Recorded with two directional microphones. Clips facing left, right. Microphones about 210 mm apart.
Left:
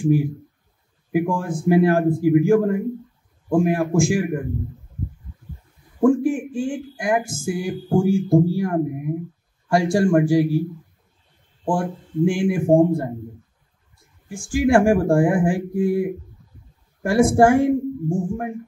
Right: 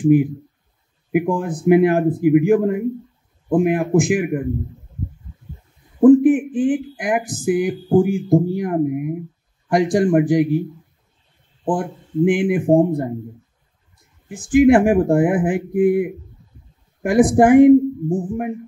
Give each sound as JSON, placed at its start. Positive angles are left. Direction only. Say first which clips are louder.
{"t": 0.0, "sound": "speech", "louder": "right 5 dB", "side_deg": -20}
{"t": 5.9, "sound": "speech", "louder": "right 7 dB", "side_deg": -20}
{"t": 11.6, "sound": "speech", "louder": "right 1 dB", "side_deg": -20}
{"t": 14.3, "sound": "speech", "louder": "right 5 dB", "side_deg": -20}